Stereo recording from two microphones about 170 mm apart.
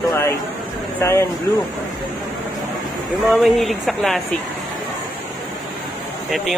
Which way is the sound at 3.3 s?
Centre (ahead or behind).